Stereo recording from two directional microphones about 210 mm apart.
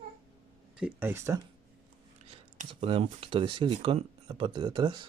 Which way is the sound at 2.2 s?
30° right (ahead or behind).